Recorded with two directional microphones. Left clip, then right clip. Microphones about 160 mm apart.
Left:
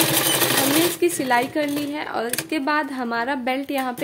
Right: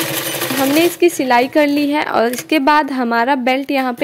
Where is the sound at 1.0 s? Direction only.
35° right (ahead or behind).